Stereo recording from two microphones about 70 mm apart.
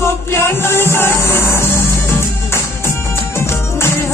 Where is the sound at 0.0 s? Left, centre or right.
Left.